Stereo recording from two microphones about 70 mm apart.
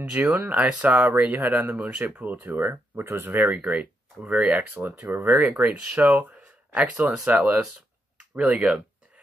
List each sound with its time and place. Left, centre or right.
0.4 s speech: centre
5.6 s speech: right